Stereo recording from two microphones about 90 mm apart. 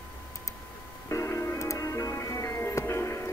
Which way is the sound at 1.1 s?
35° left (ahead or behind).